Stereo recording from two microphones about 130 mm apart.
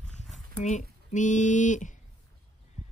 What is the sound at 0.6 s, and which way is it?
Speech, 70° left (ahead or behind).